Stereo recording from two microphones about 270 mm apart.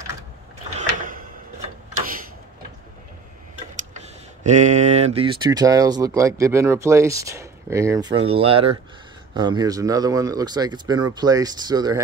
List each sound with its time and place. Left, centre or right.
0.7 s drawer open or close: right
4.4 s speech: right